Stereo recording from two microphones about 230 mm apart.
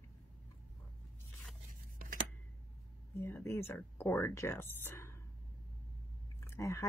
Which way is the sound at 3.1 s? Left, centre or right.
Centre.